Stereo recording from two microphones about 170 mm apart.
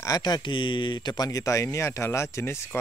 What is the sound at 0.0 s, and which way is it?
Speech, 20° left (ahead or behind).